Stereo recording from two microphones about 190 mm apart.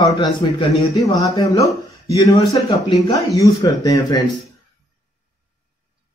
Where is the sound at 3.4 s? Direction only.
20° left (ahead or behind).